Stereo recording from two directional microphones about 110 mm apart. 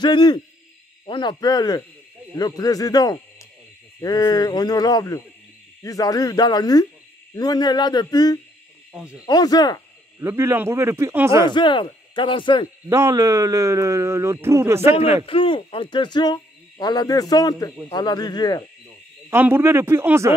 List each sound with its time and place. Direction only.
0.0 s speech: 40° left (ahead or behind)
8.9 s speech: 10° right (ahead or behind)
9.2 s speech: 35° left (ahead or behind)
10.1 s a man's voice: 25° right (ahead or behind)
11.4 s speech: 45° left (ahead or behind)
12.9 s a man's voice: 30° right (ahead or behind)
15.2 s speech: 55° left (ahead or behind); by 18.6 s 35° left (ahead or behind)
19.3 s a man's voice: 20° right (ahead or behind)